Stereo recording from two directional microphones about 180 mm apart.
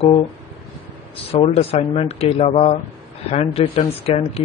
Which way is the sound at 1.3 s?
35° left (ahead or behind).